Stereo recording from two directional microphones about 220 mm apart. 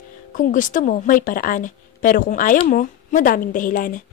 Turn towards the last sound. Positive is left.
turn(degrees=40)  # may be behind; listen again after turning